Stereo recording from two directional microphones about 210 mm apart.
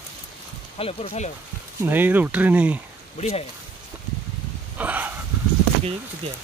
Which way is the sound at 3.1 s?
30° left (ahead or behind).